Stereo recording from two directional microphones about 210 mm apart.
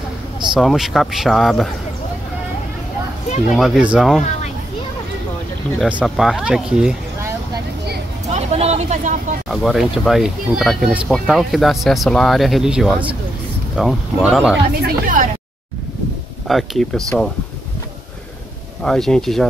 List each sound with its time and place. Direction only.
0.6 s speech: centre (ahead or behind)
3.5 s speech: centre (ahead or behind)
5.8 s speech: 5° right (ahead or behind)
8.3 s a sound: 30° right (ahead or behind)
9.5 s speech: centre (ahead or behind)
14.7 s speech: 45° right (ahead or behind)
16.4 s speech: centre (ahead or behind)
18.8 s speech: centre (ahead or behind)